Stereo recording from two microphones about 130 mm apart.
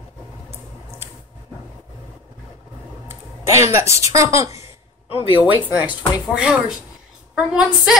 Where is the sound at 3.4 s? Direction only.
20° right (ahead or behind).